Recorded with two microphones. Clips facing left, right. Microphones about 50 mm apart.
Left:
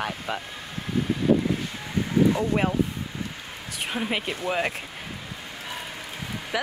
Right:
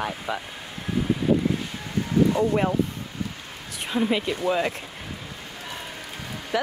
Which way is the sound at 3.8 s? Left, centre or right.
Centre.